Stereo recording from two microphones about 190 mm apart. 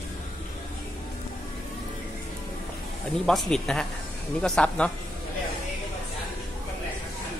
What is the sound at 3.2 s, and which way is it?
A man's voice, 5° left (ahead or behind).